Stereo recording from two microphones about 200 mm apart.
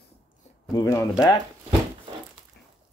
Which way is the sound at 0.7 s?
15° left (ahead or behind).